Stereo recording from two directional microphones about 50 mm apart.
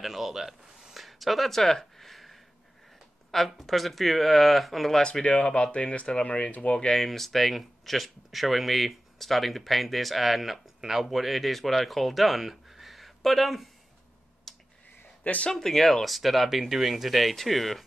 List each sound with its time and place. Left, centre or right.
0.0 s speech: centre
5.2 s speech: left
6.8 s speech: centre
14.5 s a sound: centre
15.2 s speech: left
15.5 s speech: centre